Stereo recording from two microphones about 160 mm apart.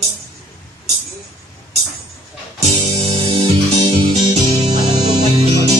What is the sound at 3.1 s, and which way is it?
Music, 35° right (ahead or behind).